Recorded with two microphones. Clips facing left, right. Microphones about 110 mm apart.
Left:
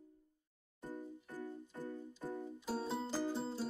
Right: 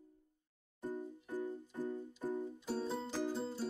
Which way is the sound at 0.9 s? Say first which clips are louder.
Right 4 dB; 15° right (ahead or behind).